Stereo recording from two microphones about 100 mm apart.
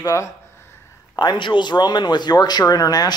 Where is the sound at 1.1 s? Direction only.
45° left (ahead or behind).